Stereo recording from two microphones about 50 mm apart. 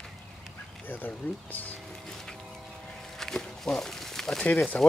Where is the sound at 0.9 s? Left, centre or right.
Left.